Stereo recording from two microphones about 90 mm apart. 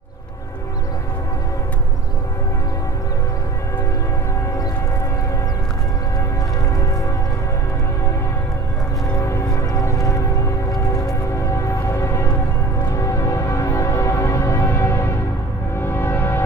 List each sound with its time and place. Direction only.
9.2 s music: 35° left (ahead or behind)